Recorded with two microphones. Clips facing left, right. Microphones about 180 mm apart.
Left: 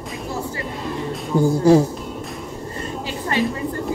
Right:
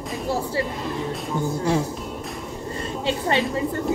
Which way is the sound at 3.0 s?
25° right (ahead or behind).